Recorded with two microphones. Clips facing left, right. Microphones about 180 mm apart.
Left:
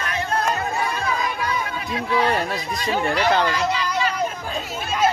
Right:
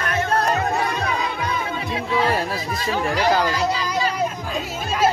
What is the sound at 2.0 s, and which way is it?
Speech, 25° right (ahead or behind).